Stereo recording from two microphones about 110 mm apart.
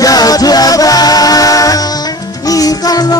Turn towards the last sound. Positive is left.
turn(degrees=35)  # may be behind; listen again after turning